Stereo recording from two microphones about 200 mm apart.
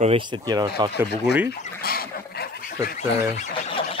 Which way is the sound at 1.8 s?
50° left (ahead or behind).